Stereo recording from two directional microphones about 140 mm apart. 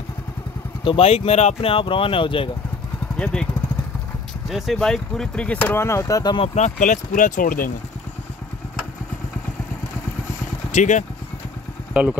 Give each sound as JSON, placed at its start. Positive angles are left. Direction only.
{"t": 0.8, "sound": "speech", "side_deg": 45}
{"t": 4.5, "sound": "speech", "side_deg": 0}
{"t": 6.3, "sound": "speech", "side_deg": 50}
{"t": 10.7, "sound": "speech", "side_deg": 60}
{"t": 11.9, "sound": "speech", "side_deg": -10}